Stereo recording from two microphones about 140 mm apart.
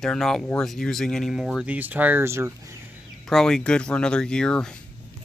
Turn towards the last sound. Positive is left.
turn(degrees=5)  # may be behind; listen again after turning